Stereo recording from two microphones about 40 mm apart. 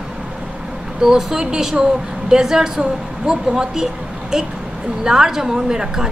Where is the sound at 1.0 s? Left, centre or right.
Centre.